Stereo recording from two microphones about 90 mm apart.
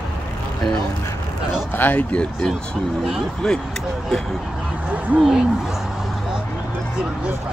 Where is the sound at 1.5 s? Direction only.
20° left (ahead or behind); by 3.6 s 5° left (ahead or behind).